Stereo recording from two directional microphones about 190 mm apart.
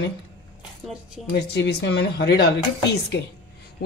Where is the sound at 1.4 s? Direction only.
60° left (ahead or behind).